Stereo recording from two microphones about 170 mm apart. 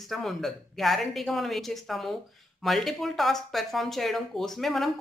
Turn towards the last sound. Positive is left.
turn(degrees=0)  # may be behind; listen again after turning